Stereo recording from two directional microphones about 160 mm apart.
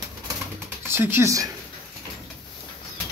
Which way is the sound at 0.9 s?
15° right (ahead or behind).